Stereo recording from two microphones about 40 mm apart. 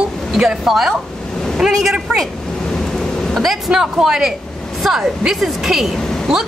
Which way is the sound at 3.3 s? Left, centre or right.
Centre.